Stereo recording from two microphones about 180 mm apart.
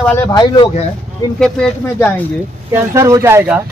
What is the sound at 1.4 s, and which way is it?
Speech, 5° left (ahead or behind).